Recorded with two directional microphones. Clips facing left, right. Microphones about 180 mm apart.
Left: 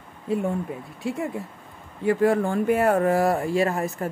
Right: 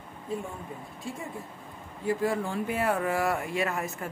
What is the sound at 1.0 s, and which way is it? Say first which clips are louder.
Speech: left 10 dB; 70° left (ahead or behind).